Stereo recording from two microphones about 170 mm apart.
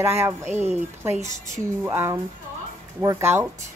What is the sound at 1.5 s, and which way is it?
Speech, 15° right (ahead or behind).